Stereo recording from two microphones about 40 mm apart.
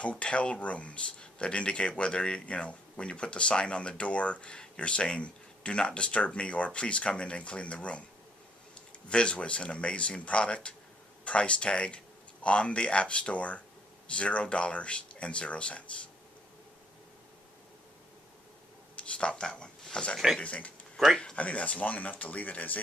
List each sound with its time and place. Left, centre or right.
0.0 s speech: left
9.1 s speech: left
18.9 s speech: left
20.3 s speech: left